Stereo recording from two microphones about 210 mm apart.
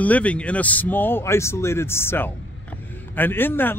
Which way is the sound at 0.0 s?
5° left (ahead or behind).